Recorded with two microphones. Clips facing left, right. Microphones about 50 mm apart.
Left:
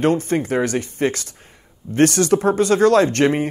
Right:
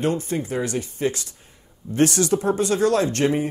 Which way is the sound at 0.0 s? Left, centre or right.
Left.